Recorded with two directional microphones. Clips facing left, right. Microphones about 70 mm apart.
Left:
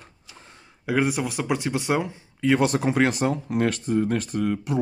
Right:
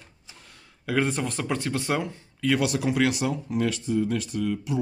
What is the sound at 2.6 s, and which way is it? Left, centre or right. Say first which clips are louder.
Speech: left 3 dB; left.